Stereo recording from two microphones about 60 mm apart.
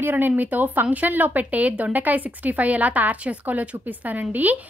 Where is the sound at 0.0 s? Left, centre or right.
Right.